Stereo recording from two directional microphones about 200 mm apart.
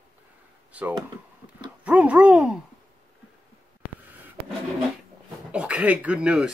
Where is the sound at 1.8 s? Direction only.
5° right (ahead or behind).